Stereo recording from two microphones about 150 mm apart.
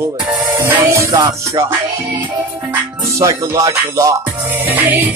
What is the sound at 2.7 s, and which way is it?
Music, 20° right (ahead or behind).